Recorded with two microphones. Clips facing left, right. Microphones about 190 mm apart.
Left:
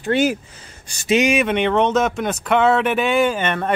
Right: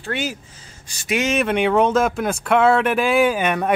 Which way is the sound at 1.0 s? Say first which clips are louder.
Left 5 dB; 20° left (ahead or behind).